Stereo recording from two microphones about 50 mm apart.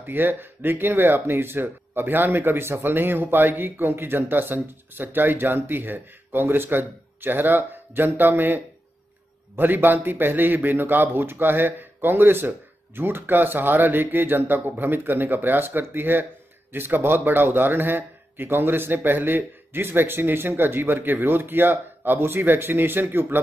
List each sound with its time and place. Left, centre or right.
0.1 s speech: right